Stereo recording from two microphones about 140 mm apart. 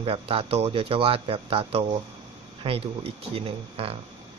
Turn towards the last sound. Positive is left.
turn(degrees=-45)  # may be behind; listen again after turning